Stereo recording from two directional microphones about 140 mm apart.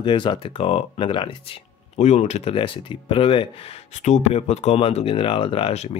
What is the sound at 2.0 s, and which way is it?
Speech, 55° left (ahead or behind).